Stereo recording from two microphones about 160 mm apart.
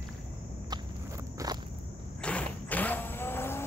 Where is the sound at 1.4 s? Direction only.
20° right (ahead or behind).